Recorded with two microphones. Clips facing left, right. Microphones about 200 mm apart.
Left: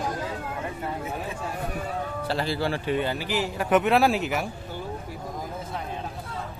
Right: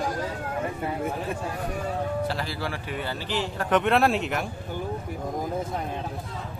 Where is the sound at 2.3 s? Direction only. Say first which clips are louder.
Left 4 dB; 30° left (ahead or behind).